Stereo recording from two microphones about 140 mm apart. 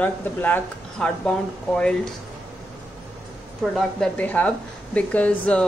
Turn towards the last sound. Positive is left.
turn(degrees=10)  # may be behind; listen again after turning